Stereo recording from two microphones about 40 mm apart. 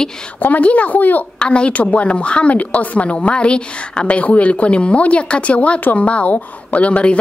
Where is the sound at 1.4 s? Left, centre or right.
Left.